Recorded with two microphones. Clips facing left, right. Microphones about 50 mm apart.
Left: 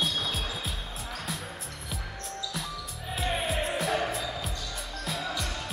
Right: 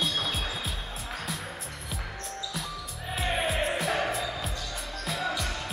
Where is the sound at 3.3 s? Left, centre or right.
Centre.